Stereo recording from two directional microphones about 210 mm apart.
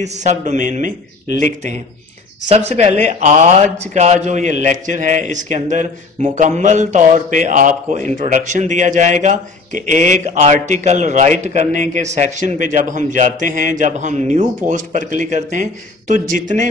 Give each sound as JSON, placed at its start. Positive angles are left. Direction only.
{"t": 0.0, "sound": "speech", "side_deg": -35}